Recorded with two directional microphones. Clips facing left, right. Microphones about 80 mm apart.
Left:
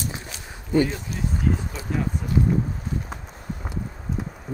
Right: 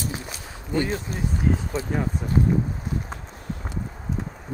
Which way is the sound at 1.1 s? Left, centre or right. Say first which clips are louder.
Right 1 dB; right.